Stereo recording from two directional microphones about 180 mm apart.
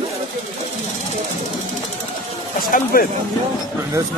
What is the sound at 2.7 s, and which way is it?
Speech, 50° left (ahead or behind).